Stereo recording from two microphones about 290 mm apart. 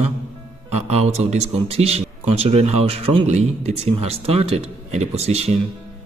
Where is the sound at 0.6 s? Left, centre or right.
Right.